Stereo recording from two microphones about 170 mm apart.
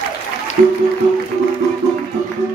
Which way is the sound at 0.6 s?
45° right (ahead or behind).